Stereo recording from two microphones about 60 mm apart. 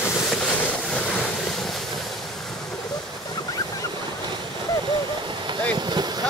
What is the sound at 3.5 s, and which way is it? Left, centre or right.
Fowl, left.